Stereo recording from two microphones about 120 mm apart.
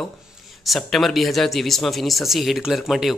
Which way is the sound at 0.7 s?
Centre (ahead or behind).